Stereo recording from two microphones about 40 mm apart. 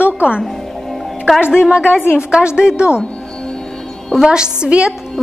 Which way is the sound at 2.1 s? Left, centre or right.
Right.